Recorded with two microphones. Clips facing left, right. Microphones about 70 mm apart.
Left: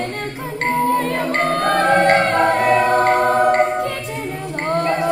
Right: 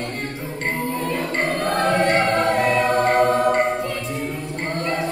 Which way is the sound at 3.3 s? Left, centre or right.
Left.